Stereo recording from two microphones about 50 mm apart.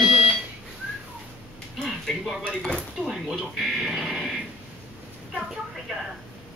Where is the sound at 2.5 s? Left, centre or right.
Centre.